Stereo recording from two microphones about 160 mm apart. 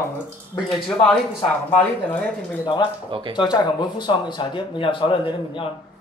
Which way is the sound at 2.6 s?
30° left (ahead or behind).